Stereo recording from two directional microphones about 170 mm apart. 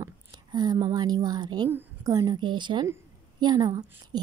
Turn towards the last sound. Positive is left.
turn(degrees=-25)  # may be behind; listen again after turning